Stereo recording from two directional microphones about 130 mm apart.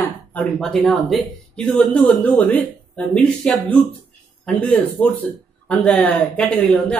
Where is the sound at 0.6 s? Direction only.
5° left (ahead or behind).